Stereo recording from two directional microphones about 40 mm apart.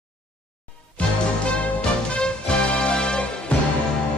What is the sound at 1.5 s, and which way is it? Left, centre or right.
Music, left.